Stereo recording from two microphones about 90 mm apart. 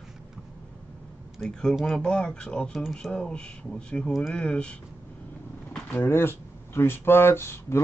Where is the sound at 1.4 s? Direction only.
5° left (ahead or behind).